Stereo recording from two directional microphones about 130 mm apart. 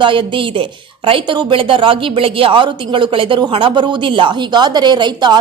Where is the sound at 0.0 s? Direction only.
40° right (ahead or behind).